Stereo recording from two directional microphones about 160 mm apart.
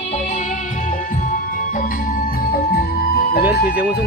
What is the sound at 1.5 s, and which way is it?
Music, 60° left (ahead or behind).